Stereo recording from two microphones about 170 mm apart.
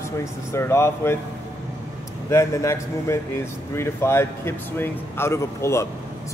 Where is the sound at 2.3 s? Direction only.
15° left (ahead or behind).